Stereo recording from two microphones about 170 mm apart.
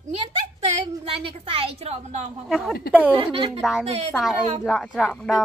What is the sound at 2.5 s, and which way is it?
Speech, centre (ahead or behind).